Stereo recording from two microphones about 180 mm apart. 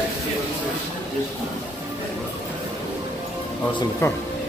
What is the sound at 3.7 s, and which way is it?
Speech, 25° left (ahead or behind).